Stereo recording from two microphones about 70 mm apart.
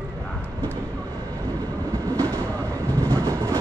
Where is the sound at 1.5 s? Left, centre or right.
Right.